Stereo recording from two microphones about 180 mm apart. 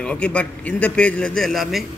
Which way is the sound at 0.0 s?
5° left (ahead or behind).